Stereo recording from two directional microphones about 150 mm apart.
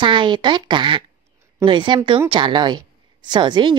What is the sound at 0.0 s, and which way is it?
A woman's voice, 30° right (ahead or behind).